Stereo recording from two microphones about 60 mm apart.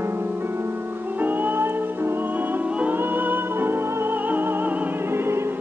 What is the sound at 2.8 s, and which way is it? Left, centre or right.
Music, right.